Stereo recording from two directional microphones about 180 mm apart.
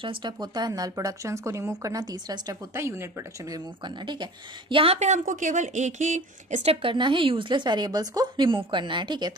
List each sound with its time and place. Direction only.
0.0 s speech: 25° right (ahead or behind)